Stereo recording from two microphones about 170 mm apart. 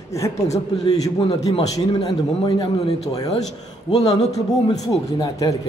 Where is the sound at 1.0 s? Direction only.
40° left (ahead or behind).